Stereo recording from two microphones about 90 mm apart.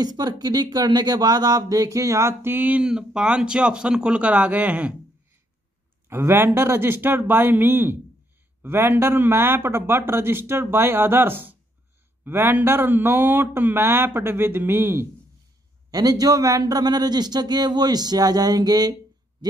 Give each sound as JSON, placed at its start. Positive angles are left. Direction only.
{"t": 0.0, "sound": "a man's voice", "side_deg": -50}
{"t": 2.8, "sound": "speech", "side_deg": -10}
{"t": 6.0, "sound": "a man's voice", "side_deg": -25}
{"t": 15.9, "sound": "a man's voice", "side_deg": -45}